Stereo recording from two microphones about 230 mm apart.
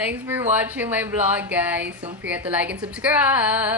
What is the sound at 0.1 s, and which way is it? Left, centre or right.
Speech, centre.